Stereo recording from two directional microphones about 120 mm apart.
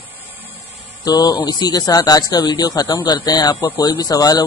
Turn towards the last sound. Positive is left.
turn(degrees=35)  # may be behind; listen again after turning